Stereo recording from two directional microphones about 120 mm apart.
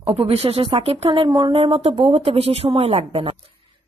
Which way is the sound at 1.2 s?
40° right (ahead or behind).